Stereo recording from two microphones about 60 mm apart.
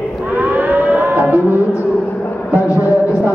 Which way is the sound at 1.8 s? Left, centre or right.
Left.